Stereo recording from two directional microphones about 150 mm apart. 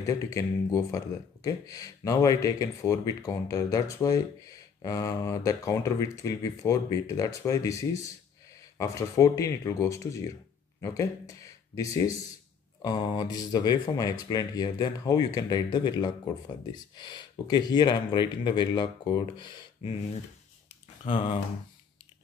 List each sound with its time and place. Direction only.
0.0 s speech: 20° left (ahead or behind)
8.7 s speech: 20° left (ahead or behind)
21.0 s speech: 35° left (ahead or behind)